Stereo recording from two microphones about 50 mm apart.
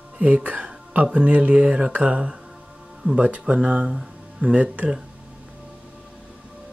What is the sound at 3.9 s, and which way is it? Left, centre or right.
Music, centre.